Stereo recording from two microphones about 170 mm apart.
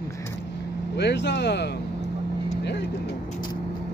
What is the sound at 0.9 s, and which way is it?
Speech, 90° left.